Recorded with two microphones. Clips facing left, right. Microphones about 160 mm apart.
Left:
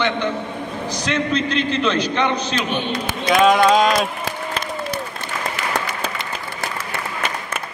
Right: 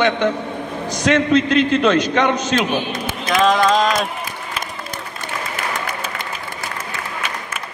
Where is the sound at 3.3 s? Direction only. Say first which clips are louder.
Left 1 dB; 5° left (ahead or behind).